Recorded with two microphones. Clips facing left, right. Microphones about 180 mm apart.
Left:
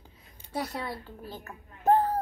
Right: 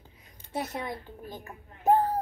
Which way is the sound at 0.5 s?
20° right (ahead or behind).